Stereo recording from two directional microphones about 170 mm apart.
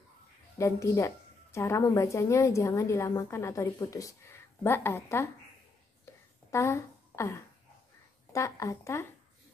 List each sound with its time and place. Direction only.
0.6 s speech: 15° left (ahead or behind)
6.5 s a woman's voice: 15° left (ahead or behind)